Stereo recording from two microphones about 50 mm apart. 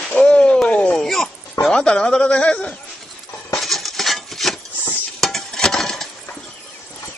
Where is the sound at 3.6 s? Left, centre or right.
Centre.